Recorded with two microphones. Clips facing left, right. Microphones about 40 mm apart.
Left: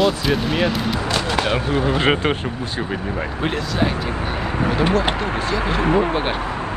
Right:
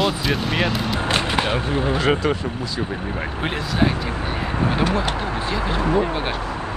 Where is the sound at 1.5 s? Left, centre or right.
Left.